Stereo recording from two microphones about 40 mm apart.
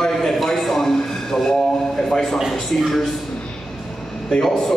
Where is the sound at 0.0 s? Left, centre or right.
Centre.